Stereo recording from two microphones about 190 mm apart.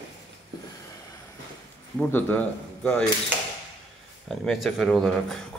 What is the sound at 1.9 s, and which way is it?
Speech, 10° left (ahead or behind).